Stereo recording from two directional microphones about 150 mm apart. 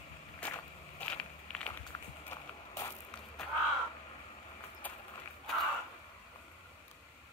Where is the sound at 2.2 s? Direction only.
20° left (ahead or behind).